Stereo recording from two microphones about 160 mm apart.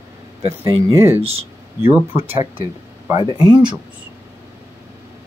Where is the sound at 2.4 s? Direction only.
20° right (ahead or behind).